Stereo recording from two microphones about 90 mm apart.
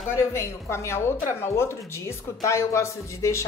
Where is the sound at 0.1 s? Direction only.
30° left (ahead or behind).